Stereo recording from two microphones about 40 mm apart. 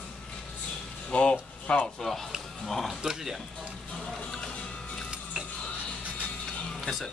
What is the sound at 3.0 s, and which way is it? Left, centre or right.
Speech, centre.